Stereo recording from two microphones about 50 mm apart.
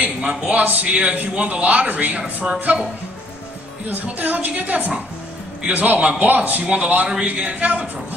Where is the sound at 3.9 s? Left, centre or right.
Right.